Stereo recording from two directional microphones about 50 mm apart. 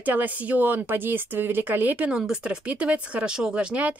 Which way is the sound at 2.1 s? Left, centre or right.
Centre.